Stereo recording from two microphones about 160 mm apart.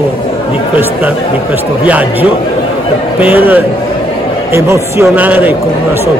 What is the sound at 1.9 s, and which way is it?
A woman's voice, 10° right (ahead or behind).